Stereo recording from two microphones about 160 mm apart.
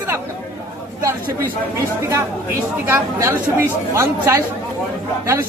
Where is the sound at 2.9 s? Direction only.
20° right (ahead or behind).